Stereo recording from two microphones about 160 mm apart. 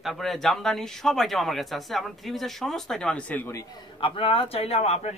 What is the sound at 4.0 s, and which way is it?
A man's voice, 35° left (ahead or behind).